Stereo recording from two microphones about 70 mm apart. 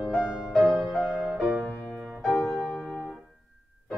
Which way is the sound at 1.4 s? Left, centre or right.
Right.